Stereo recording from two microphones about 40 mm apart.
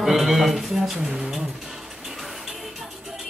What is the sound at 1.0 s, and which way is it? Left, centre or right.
Speech, right.